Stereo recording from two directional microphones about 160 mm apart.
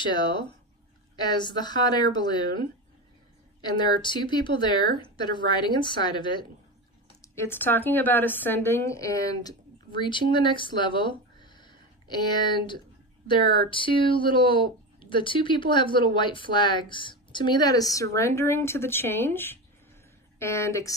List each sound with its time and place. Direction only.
0.0 s speech: 30° left (ahead or behind)
7.2 s speech: 15° left (ahead or behind)